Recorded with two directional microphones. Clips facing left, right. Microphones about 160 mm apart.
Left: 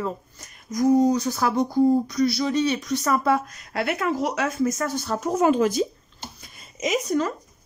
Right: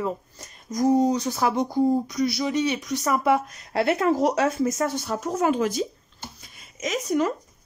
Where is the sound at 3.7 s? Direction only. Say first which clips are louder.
Right 3 dB; 30° right (ahead or behind).